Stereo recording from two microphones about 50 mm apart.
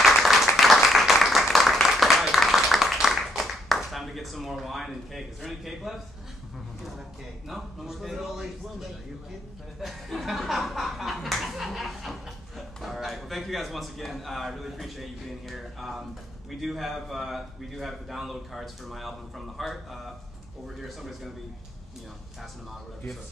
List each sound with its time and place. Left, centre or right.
0.0 s applause: centre
7.4 s a man's voice: centre
9.8 s a man's voice: centre